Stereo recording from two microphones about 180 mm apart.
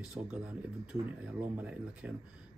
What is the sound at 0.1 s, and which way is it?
A man's voice, 5° right (ahead or behind).